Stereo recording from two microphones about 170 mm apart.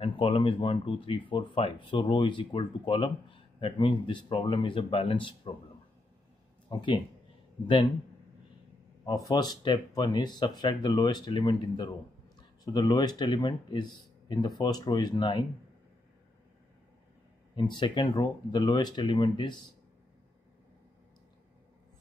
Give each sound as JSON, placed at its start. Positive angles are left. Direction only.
{"t": 0.0, "sound": "speech", "side_deg": 30}
{"t": 6.7, "sound": "a man's voice", "side_deg": 30}
{"t": 9.0, "sound": "speech", "side_deg": 20}
{"t": 17.6, "sound": "speech", "side_deg": 30}